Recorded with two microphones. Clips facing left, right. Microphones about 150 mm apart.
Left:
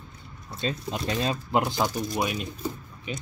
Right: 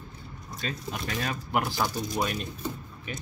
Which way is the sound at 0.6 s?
25° left (ahead or behind).